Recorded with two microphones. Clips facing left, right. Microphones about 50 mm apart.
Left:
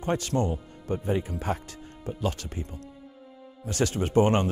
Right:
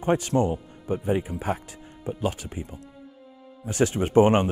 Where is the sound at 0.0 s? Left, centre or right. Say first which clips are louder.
Right 4 dB; centre.